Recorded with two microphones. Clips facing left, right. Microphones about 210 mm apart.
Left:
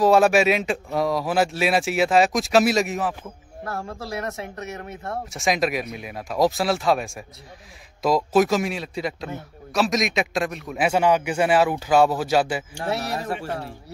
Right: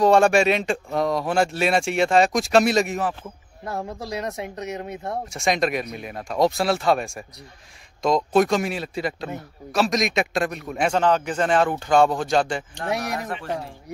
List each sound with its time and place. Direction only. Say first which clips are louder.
0.0 s speech: even; 5° left (ahead or behind)
3.6 s speech: right 1 dB; 20° right (ahead or behind)
5.3 s speech: even; centre (ahead or behind)